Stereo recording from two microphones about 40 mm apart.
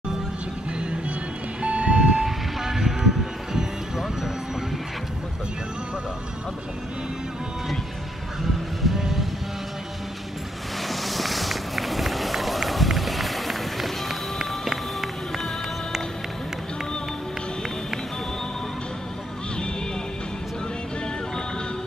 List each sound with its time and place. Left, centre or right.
0.7 s music: right
1.6 s vehicle: right
2.2 s vehicle: centre
8.8 s music: centre
10.9 s run: centre